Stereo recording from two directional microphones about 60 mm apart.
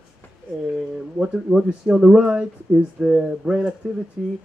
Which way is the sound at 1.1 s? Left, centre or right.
Centre.